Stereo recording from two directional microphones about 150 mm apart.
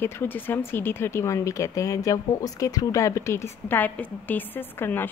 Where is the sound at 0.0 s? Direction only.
15° left (ahead or behind).